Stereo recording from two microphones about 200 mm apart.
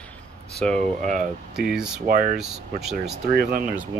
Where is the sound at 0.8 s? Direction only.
40° right (ahead or behind).